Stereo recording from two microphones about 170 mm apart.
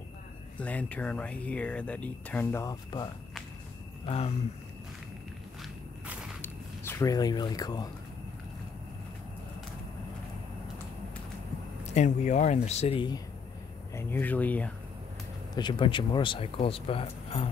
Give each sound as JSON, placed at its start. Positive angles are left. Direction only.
{"t": 0.6, "sound": "speech", "side_deg": 10}
{"t": 4.0, "sound": "speech", "side_deg": 35}
{"t": 5.6, "sound": "walk", "side_deg": -5}
{"t": 6.4, "sound": "a sound", "side_deg": 15}
{"t": 11.8, "sound": "speech", "side_deg": 45}
{"t": 13.9, "sound": "speech", "side_deg": 10}
{"t": 15.5, "sound": "speech", "side_deg": 30}